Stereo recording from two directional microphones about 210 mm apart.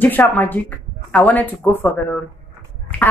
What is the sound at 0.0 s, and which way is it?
A woman's voice, 10° left (ahead or behind).